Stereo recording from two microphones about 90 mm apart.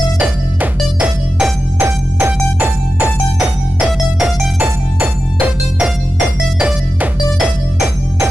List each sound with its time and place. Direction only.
0.9 s music: 15° right (ahead or behind)